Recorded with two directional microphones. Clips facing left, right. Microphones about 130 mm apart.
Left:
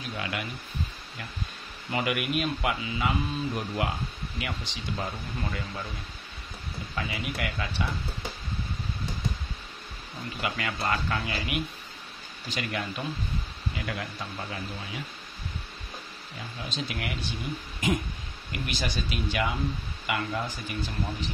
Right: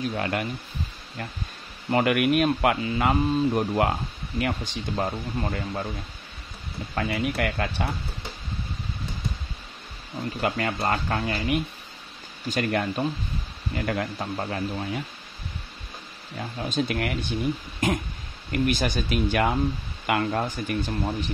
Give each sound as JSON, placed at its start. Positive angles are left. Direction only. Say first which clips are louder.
{"t": 0.1, "sound": "speech", "louder": "right 6 dB", "side_deg": -45}
{"t": 1.9, "sound": "speech", "louder": "right 8 dB", "side_deg": -50}
{"t": 7.0, "sound": "speech", "louder": "right 7 dB", "side_deg": -50}
{"t": 10.4, "sound": "speech", "louder": "right 5 dB", "side_deg": -40}
{"t": 16.3, "sound": "speech", "louder": "right 9 dB", "side_deg": -50}